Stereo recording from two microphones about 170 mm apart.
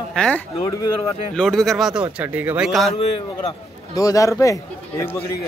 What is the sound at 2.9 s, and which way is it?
Speech, 35° left (ahead or behind).